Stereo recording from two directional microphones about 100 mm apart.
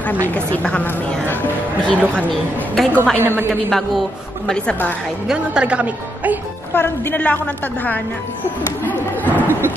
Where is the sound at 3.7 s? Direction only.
Centre (ahead or behind).